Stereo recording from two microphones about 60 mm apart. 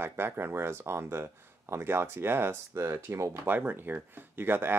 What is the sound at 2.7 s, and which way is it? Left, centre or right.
Speech, right.